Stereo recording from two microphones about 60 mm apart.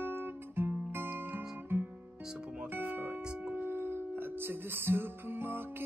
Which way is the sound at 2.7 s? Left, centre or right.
Right.